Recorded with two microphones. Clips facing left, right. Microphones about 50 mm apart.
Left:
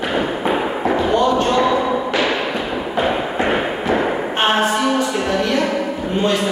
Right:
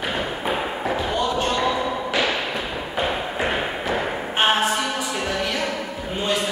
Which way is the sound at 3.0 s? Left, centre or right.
Centre.